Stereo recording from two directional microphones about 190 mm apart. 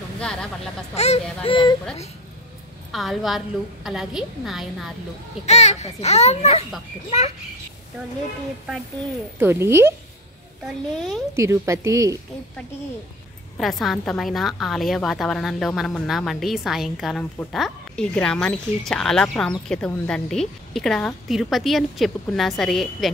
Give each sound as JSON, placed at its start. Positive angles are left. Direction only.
{"t": 0.2, "sound": "a woman's voice", "side_deg": 5}
{"t": 0.9, "sound": "a sound", "side_deg": 35}
{"t": 2.9, "sound": "a woman's voice", "side_deg": 0}
{"t": 5.4, "sound": "a child's voice", "side_deg": 35}
{"t": 9.4, "sound": "speech", "side_deg": -10}
{"t": 10.6, "sound": "a woman's voice", "side_deg": 0}
{"t": 11.3, "sound": "speech", "side_deg": -15}
{"t": 13.6, "sound": "a woman's voice", "side_deg": 0}